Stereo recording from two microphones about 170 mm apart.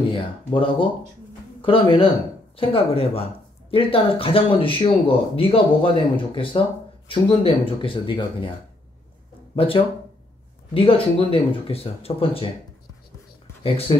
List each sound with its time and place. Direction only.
0.1 s speech: 30° left (ahead or behind)
9.6 s speech: 35° left (ahead or behind)
13.6 s speech: 30° left (ahead or behind)